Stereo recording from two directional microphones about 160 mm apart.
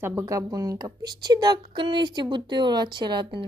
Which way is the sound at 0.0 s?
15° right (ahead or behind).